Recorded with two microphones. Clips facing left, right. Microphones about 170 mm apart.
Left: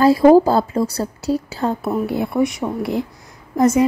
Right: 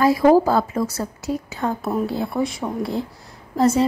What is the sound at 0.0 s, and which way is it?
A woman's voice, 30° left (ahead or behind).